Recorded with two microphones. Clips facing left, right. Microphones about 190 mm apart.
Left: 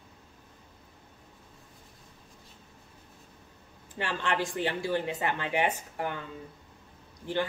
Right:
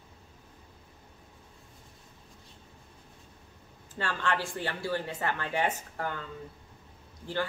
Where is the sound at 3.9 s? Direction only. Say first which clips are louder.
Left 1 dB; 15° left (ahead or behind).